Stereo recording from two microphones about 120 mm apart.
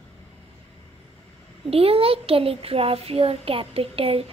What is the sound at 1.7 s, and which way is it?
A child's voice, 55° right (ahead or behind).